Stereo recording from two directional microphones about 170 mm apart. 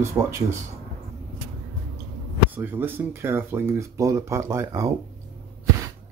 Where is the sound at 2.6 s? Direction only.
10° right (ahead or behind).